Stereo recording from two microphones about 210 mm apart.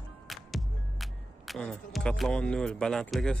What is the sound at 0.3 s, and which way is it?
Music, centre (ahead or behind).